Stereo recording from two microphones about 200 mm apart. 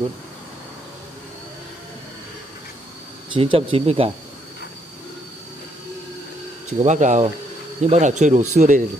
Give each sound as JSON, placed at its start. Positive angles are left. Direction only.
{"t": 3.3, "sound": "speech", "side_deg": -30}
{"t": 6.8, "sound": "speech", "side_deg": -40}